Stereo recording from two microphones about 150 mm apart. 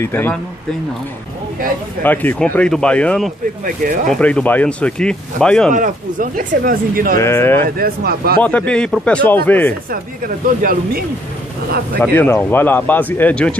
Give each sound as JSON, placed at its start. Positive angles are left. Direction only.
{"t": 0.0, "sound": "speech", "side_deg": 15}
{"t": 2.0, "sound": "speech", "side_deg": 10}
{"t": 3.6, "sound": "speech", "side_deg": -65}
{"t": 4.1, "sound": "speech", "side_deg": 10}
{"t": 5.7, "sound": "speech", "side_deg": -60}
{"t": 7.2, "sound": "speech", "side_deg": 20}
{"t": 7.7, "sound": "speech", "side_deg": -80}
{"t": 8.4, "sound": "speech", "side_deg": 10}
{"t": 9.8, "sound": "speech", "side_deg": -70}
{"t": 12.0, "sound": "speech", "side_deg": 15}